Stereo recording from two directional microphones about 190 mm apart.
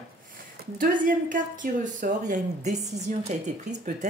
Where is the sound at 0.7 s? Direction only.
45° right (ahead or behind).